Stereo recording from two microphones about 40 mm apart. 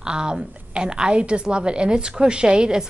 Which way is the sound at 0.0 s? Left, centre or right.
Right.